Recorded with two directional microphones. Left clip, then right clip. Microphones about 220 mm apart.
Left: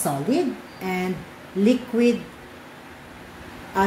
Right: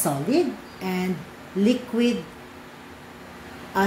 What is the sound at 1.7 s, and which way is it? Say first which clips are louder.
Speech: left 3 dB; 15° right (ahead or behind).